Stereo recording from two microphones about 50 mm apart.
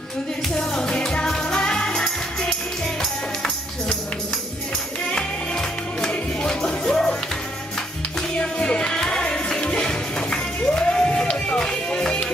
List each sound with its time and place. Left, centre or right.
0.6 s music: centre
5.9 s music: centre
8.4 s music: left